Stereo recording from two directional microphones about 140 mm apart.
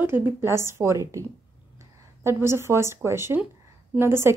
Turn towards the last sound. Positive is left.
turn(degrees=-15)  # may be behind; listen again after turning